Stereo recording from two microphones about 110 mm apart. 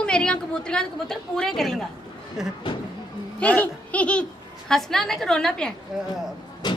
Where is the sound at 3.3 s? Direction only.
15° left (ahead or behind).